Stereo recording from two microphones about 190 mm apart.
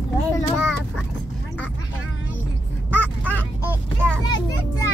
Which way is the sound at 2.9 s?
10° left (ahead or behind).